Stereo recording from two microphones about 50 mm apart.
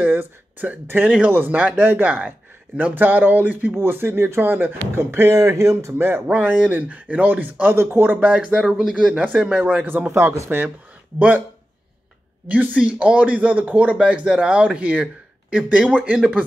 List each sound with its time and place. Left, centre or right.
0.0 s a sound: right
1.0 s speech: right
5.3 s speech: right
6.2 s speech: right
7.7 s speech: right
8.2 s a man's voice: right
9.2 s speech: right
9.8 s speech: right
10.1 s speech: right
11.1 s speech: right
12.4 s speech: right
13.9 s speech: right